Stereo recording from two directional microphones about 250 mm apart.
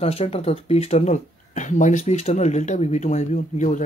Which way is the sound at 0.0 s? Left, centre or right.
Left.